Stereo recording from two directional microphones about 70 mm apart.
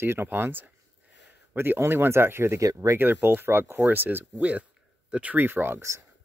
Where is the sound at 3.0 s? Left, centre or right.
Right.